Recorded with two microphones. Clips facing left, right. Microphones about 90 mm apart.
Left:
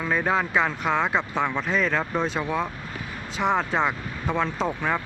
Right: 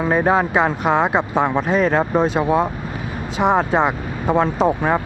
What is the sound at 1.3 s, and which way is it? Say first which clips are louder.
Speech: right 7 dB; 45° right (ahead or behind).